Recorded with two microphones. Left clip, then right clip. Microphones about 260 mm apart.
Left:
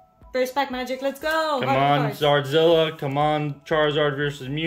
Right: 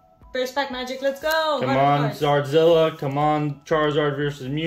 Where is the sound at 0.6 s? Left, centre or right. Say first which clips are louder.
Left 1 dB; left.